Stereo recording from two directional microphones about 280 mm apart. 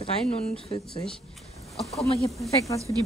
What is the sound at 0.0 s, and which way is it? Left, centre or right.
Speech, left.